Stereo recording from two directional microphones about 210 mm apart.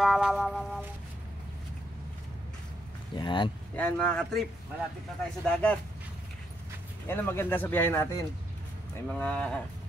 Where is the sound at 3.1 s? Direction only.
25° left (ahead or behind).